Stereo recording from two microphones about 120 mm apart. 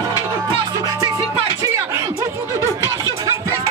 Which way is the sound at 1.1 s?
25° right (ahead or behind).